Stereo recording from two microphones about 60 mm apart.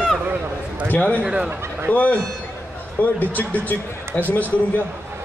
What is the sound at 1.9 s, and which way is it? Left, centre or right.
Speech, left.